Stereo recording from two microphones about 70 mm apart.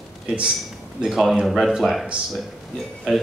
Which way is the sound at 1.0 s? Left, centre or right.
Centre.